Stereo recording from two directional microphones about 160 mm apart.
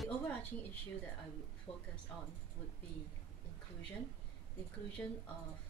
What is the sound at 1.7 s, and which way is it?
Speech, 30° left (ahead or behind).